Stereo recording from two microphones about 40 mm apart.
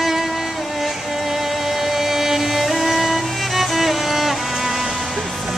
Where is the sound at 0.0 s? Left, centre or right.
Centre.